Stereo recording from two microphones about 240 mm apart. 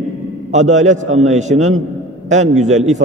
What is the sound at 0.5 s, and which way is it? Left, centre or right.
A man's voice, right.